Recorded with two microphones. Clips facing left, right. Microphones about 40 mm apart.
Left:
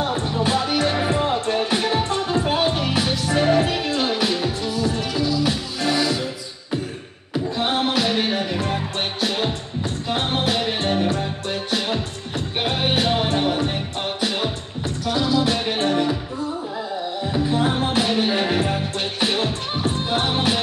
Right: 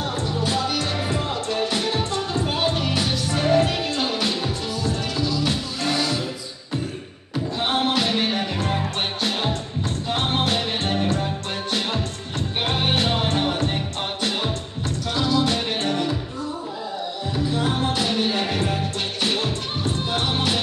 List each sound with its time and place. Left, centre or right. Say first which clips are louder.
0.0 s music: left 3 dB; left; by 4.5 s centre
4.8 s music: left 1 dB; centre
5.9 s music: left 3 dB; centre
7.5 s music: even; centre
10.0 s music: left 1 dB; centre
12.6 s music: left 2 dB; centre
15.1 s music: left 1 dB; centre
17.3 s music: left 3 dB; left